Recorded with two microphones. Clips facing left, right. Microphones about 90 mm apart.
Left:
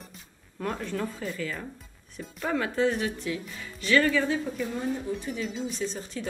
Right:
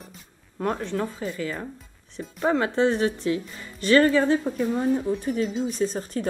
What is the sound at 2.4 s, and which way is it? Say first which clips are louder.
A woman's voice: right 5 dB; 30° right (ahead or behind).